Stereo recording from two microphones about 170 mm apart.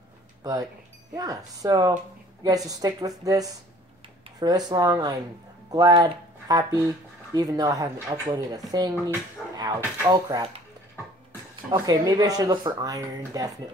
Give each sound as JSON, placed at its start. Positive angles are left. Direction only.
{"t": 0.4, "sound": "speech", "side_deg": -20}
{"t": 4.4, "sound": "speech", "side_deg": -25}
{"t": 9.4, "sound": "music", "side_deg": 0}
{"t": 10.0, "sound": "speech", "side_deg": -25}
{"t": 11.7, "sound": "speech", "side_deg": -20}